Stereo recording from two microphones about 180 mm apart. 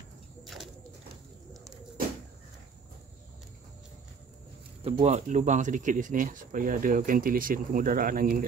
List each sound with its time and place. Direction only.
0.4 s bird: centre (ahead or behind)
4.8 s speech: 35° right (ahead or behind); by 8.5 s 55° right (ahead or behind)